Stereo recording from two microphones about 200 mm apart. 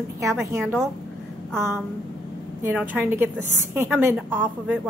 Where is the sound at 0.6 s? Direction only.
5° left (ahead or behind).